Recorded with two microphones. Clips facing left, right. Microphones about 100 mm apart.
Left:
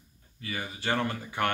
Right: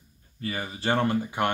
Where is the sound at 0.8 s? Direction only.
25° right (ahead or behind).